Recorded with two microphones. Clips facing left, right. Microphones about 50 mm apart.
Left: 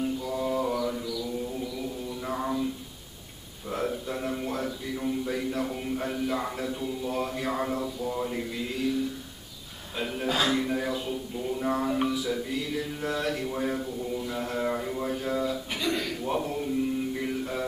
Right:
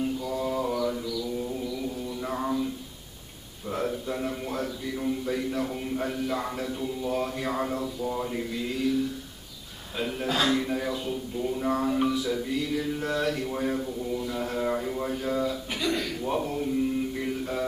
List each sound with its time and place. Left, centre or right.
0.0 s mantra: centre
3.6 s a sound: centre
9.9 s speech: centre
12.1 s music: centre